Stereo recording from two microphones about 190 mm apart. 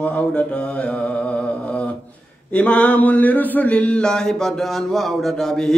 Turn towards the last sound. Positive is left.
turn(degrees=0)  # may be behind; listen again after turning